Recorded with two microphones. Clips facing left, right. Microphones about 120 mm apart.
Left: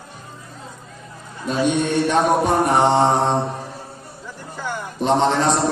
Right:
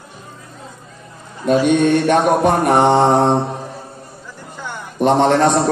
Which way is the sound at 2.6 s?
55° right (ahead or behind).